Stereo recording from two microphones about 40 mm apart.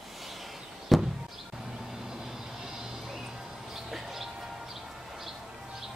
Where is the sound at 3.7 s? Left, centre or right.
Centre.